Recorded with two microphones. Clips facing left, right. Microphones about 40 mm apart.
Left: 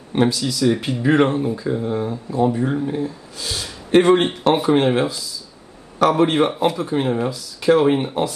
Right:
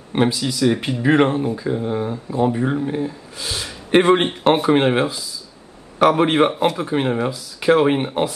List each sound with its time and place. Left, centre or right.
0.1 s speech: centre
6.5 s speech: centre
6.8 s speech: right